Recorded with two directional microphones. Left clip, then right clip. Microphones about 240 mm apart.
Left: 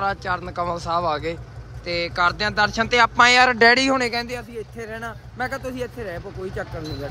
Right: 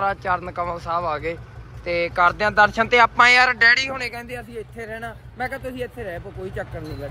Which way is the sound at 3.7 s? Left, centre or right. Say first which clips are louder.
Left 1 dB; left.